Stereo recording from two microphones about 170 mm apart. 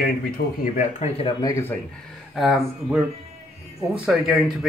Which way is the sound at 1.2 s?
20° left (ahead or behind).